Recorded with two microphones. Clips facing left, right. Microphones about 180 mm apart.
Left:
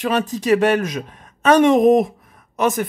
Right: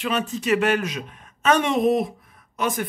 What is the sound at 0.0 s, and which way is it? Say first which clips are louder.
Speech: left 5 dB; 40° left (ahead or behind).